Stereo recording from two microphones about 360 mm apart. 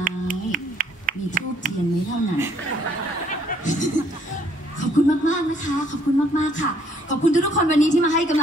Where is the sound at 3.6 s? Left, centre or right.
Left.